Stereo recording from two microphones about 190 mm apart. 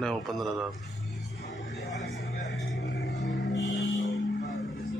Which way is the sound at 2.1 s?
60° left (ahead or behind).